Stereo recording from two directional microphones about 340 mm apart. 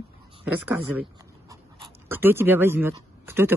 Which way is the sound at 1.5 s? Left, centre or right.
Centre.